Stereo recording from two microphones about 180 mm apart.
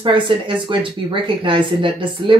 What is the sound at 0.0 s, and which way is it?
Speech, 25° right (ahead or behind).